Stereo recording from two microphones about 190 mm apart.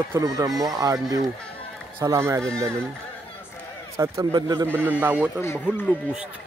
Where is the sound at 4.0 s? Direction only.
20° right (ahead or behind).